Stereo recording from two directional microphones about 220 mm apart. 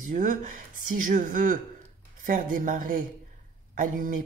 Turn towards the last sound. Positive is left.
turn(degrees=-40)  # may be behind; listen again after turning